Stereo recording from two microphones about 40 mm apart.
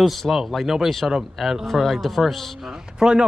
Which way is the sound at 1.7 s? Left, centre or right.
Centre.